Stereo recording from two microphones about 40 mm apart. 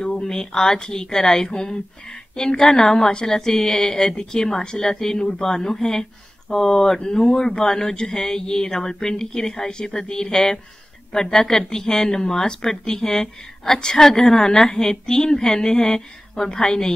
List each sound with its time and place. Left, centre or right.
0.0 s speech: centre